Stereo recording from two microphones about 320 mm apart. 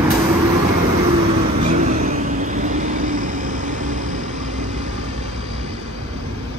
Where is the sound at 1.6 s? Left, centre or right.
Right.